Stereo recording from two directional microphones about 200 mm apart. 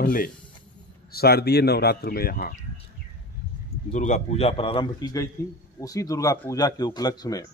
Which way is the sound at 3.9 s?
35° left (ahead or behind).